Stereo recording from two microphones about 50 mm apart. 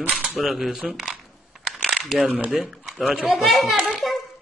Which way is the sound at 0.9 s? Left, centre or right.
Centre.